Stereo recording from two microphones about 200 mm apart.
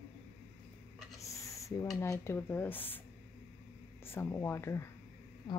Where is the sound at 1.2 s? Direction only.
15° left (ahead or behind).